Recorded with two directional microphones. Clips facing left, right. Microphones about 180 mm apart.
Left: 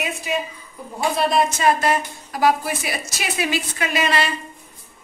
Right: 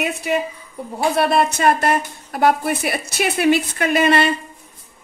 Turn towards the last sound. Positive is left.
turn(degrees=-55)  # may be behind; listen again after turning